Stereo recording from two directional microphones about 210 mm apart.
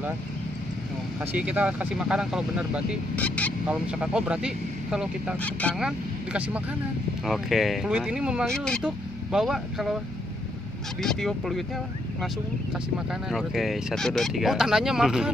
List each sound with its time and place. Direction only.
1.2 s speech: 5° right (ahead or behind)
3.2 s speech: 5° left (ahead or behind)
3.6 s speech: 5° right (ahead or behind)
5.4 s speech: 5° left (ahead or behind)
5.8 s speech: 5° right (ahead or behind)
11.0 s speech: centre (ahead or behind)
13.1 s speech: centre (ahead or behind)